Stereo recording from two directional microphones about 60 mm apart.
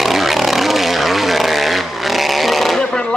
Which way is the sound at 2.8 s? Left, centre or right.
Centre.